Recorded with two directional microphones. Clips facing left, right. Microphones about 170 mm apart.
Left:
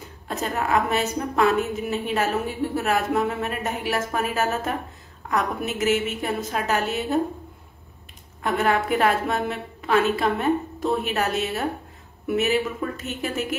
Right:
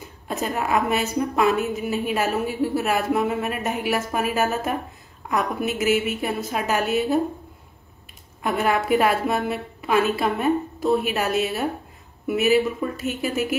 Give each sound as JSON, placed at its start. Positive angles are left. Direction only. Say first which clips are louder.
{"t": 0.4, "sound": "a woman's voice", "louder": "even", "side_deg": -10}
{"t": 8.4, "sound": "a woman's voice", "louder": "even", "side_deg": -10}